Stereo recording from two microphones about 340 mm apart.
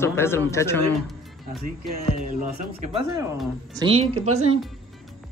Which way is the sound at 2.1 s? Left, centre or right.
Right.